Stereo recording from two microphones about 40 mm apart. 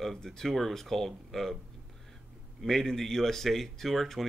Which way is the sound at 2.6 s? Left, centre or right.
Centre.